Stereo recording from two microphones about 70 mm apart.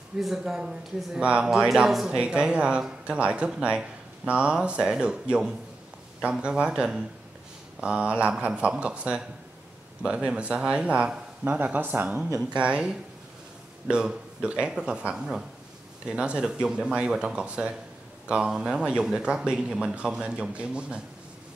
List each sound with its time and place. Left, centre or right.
0.2 s speech: centre; by 12.2 s right
12.5 s speech: centre